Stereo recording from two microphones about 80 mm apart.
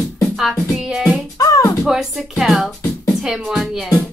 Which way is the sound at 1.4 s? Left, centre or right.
Left.